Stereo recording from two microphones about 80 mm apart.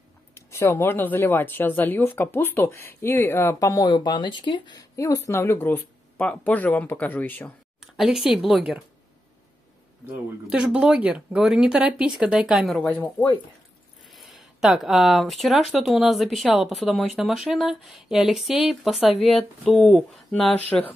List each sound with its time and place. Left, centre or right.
0.3 s speech: left
3.5 s speech: left
4.9 s speech: left
5.6 s speech: left
8.0 s speech: centre
10.5 s speech: centre
14.0 s speech: centre